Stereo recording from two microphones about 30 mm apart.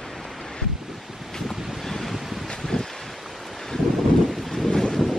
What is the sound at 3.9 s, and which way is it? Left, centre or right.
Wind noise, centre.